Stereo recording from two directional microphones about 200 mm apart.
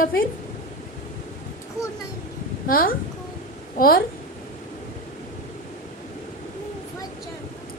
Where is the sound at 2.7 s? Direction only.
45° left (ahead or behind).